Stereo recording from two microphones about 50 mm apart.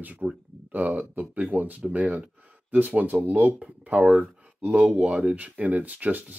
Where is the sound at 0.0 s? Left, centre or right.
Right.